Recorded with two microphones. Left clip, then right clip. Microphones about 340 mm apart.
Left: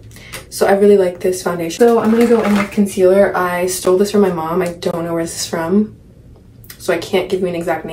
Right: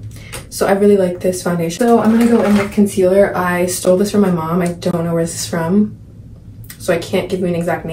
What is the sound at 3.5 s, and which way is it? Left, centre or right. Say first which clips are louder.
Speech: even; centre.